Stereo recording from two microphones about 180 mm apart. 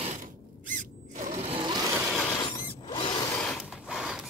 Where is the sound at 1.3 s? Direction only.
30° right (ahead or behind).